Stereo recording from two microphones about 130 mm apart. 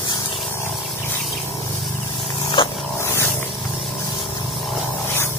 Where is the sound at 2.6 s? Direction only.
40° left (ahead or behind).